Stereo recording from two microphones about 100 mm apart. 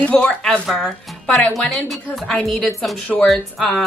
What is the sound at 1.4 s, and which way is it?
Speech, 15° left (ahead or behind).